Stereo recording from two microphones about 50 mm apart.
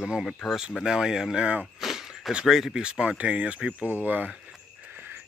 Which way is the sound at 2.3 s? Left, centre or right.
Centre.